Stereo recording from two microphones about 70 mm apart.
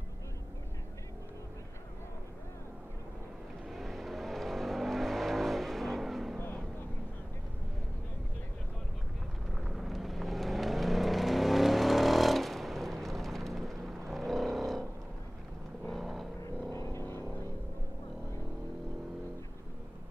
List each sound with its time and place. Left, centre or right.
3.6 s vehicle: centre
9.5 s vehicle: centre
15.9 s vehicle: centre
16.7 s vehicle: left